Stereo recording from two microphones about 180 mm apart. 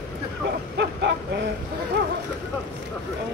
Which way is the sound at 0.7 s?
70° right (ahead or behind).